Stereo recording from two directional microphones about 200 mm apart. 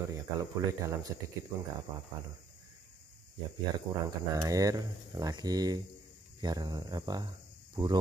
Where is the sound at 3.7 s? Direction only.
15° right (ahead or behind).